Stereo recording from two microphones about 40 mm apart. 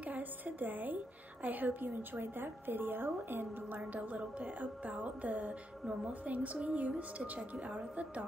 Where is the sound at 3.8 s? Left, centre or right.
Right.